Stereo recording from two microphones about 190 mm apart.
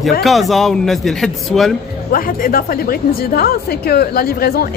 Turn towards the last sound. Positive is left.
turn(degrees=55)  # may be behind; listen again after turning